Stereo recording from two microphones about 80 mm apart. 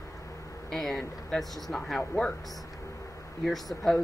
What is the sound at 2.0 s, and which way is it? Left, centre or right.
Speech, centre.